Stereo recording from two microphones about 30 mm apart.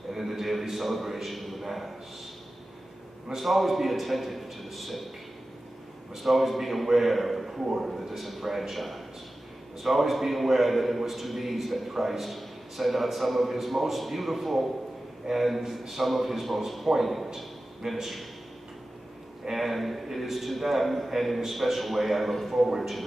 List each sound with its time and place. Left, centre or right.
0.1 s a sound: centre
0.7 s a man's voice: centre
3.3 s a man's voice: centre
6.2 s a man's voice: centre
17.8 s a man's voice: centre
19.5 s a man's voice: centre